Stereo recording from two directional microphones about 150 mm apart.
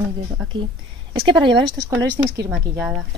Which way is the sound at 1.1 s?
35° right (ahead or behind).